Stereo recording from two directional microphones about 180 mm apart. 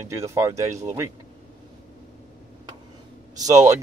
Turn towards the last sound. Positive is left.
turn(degrees=-20)  # may be behind; listen again after turning